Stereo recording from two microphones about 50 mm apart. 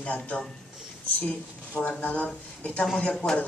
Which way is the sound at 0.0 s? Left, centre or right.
Left.